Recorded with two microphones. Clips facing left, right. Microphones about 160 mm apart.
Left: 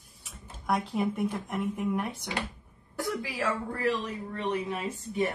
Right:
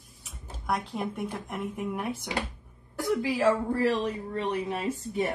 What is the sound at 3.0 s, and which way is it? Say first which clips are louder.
Speech: right 6 dB; 20° right (ahead or behind).